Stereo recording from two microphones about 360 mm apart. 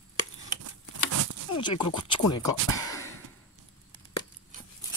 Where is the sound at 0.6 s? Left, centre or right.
Right.